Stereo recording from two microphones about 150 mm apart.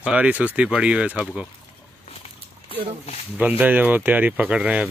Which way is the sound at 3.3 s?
10° right (ahead or behind).